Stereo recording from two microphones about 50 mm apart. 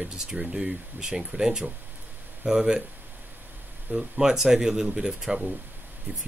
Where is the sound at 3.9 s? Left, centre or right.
Centre.